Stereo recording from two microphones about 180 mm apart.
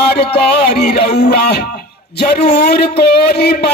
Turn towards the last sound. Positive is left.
turn(degrees=60)  # may be behind; listen again after turning